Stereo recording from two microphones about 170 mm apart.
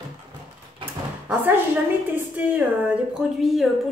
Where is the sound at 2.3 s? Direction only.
10° right (ahead or behind).